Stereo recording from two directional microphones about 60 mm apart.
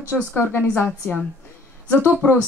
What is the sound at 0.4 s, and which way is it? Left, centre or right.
Speech, left.